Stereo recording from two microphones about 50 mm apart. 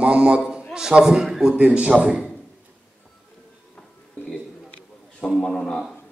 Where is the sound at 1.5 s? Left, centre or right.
Right.